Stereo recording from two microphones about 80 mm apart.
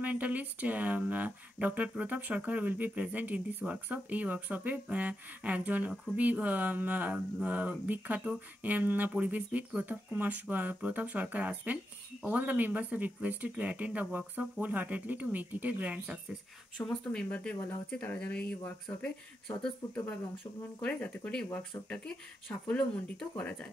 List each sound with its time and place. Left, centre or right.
0.0 s speech: centre
16.7 s speech: centre